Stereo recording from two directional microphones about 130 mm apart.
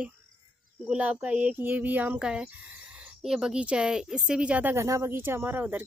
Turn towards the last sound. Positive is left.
turn(degrees=-15)  # may be behind; listen again after turning